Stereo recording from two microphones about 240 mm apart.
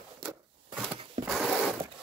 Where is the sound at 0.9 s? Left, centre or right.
Right.